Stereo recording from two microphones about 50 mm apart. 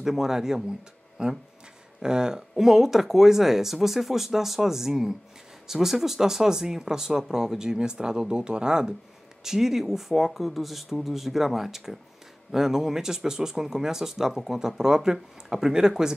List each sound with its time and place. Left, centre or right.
0.0 s speech: centre